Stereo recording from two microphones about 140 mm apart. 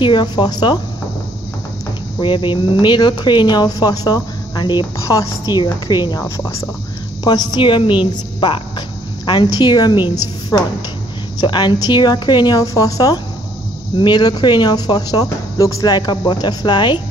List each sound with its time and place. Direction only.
0.0 s speech: 30° left (ahead or behind)
2.1 s speech: 35° left (ahead or behind)
7.2 s a woman's voice: 35° left (ahead or behind)